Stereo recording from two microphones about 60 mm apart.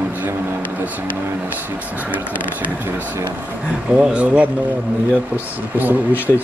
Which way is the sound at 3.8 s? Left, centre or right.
Centre.